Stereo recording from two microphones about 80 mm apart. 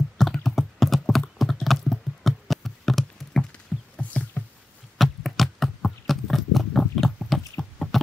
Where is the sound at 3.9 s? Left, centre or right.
Centre.